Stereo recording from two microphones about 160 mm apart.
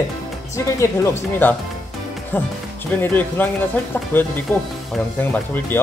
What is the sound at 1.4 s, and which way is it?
Speech, 10° left (ahead or behind).